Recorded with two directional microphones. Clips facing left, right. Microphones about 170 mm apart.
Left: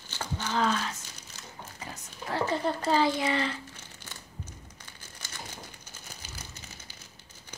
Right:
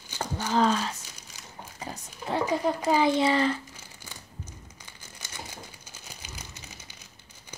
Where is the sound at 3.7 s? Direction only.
10° right (ahead or behind).